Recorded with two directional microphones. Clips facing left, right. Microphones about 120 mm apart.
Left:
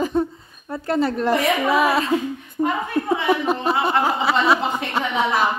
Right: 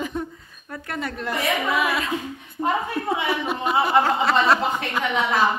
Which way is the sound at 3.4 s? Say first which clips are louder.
Left 4 dB; 40° left (ahead or behind).